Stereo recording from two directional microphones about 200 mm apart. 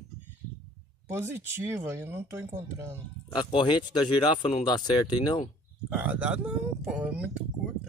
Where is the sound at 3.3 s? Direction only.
25° left (ahead or behind).